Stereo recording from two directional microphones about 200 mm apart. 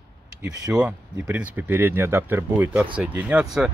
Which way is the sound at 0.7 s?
5° right (ahead or behind).